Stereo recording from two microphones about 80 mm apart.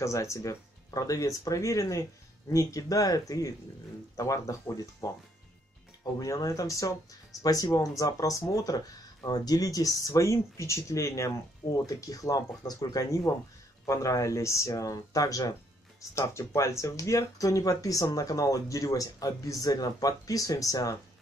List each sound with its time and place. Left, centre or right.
0.0 s speech: left
6.1 s speech: left
16.2 s speech: left